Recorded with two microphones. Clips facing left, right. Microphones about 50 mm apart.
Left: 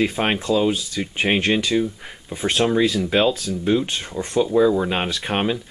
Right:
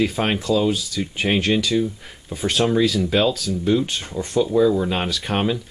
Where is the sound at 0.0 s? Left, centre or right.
Centre.